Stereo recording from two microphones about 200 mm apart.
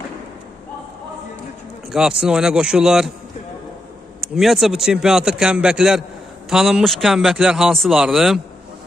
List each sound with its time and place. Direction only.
1.9 s a man's voice: 5° right (ahead or behind)
4.2 s a man's voice: centre (ahead or behind)